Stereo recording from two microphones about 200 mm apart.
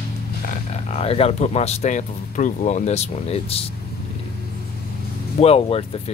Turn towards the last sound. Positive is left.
turn(degrees=30)  # may be behind; listen again after turning